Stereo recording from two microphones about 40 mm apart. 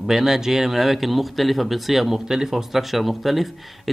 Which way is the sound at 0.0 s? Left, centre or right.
Centre.